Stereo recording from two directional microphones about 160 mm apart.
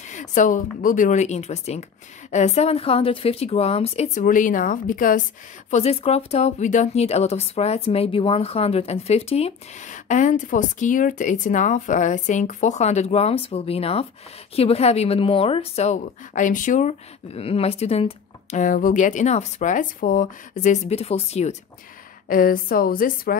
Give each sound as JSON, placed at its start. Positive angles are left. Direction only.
{"t": 0.1, "sound": "speech", "side_deg": 50}
{"t": 5.7, "sound": "speech", "side_deg": 40}
{"t": 22.3, "sound": "a woman's voice", "side_deg": 65}